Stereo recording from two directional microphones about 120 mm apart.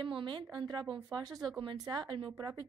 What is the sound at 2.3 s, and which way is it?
Speech, 30° right (ahead or behind).